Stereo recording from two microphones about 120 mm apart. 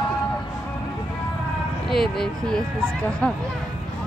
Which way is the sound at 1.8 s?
5° left (ahead or behind).